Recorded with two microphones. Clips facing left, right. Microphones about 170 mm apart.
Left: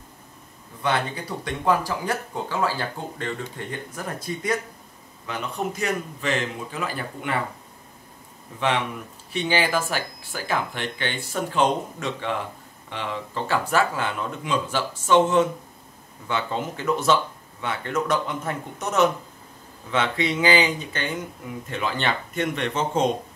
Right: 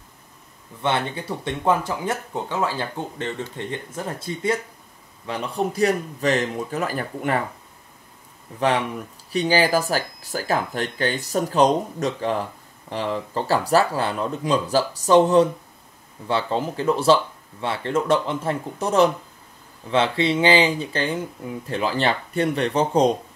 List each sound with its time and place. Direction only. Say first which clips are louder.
0.8 s speech: right 2 dB; 25° right (ahead or behind); by 7.4 s 40° right (ahead or behind)
8.5 s speech: right 3 dB; 40° right (ahead or behind)